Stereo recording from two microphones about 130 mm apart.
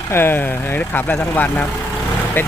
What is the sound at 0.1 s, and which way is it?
Speech, 15° left (ahead or behind).